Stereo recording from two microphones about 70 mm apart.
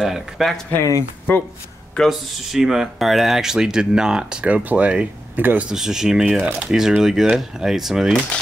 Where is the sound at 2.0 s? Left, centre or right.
Centre; by 5.6 s right.